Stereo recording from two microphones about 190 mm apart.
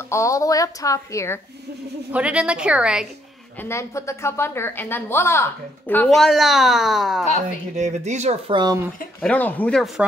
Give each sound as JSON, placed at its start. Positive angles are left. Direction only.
{"t": 0.1, "sound": "speech", "side_deg": 15}
{"t": 2.1, "sound": "a woman's voice", "side_deg": -5}
{"t": 3.6, "sound": "speech", "side_deg": 15}
{"t": 7.7, "sound": "speech", "side_deg": -35}
{"t": 8.5, "sound": "speech", "side_deg": -20}
{"t": 9.2, "sound": "speech", "side_deg": 10}